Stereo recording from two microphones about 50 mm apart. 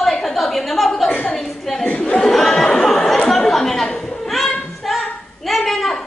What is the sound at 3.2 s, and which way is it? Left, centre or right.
Chatter, centre.